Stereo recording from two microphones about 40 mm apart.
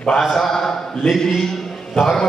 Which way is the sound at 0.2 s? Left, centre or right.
Centre.